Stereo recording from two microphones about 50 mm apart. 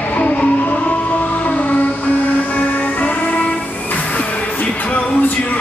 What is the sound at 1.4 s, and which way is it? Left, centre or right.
Music, left.